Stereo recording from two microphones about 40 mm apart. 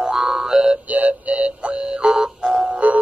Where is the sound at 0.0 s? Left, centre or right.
Centre.